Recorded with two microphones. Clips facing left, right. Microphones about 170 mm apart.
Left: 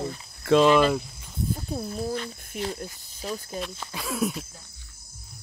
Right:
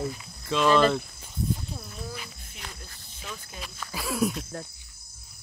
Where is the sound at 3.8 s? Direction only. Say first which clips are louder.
Right 2 dB; centre (ahead or behind).